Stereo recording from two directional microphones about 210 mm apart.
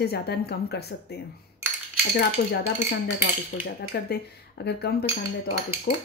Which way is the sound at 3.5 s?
60° left (ahead or behind).